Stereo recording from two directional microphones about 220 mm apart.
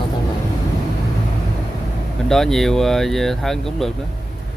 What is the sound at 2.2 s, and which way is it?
Speech, centre (ahead or behind).